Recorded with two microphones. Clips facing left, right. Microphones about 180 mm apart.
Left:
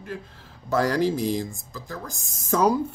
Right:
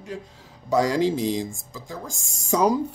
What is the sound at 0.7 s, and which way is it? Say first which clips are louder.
Speech: right 1 dB; 15° right (ahead or behind).